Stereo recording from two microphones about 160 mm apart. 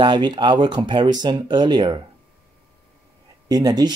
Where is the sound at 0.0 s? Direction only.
30° right (ahead or behind).